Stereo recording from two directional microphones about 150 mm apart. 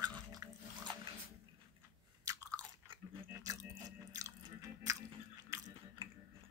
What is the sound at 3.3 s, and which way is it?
Biting, 20° right (ahead or behind).